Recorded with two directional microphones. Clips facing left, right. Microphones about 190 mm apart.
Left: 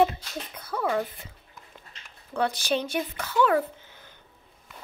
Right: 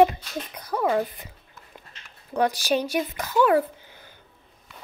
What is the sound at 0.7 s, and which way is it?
Speech, 30° right (ahead or behind).